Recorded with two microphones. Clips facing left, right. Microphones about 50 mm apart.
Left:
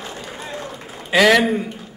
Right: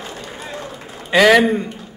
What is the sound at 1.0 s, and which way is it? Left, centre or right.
Speech, centre.